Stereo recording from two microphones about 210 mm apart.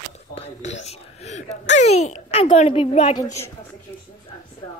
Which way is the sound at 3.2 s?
15° left (ahead or behind).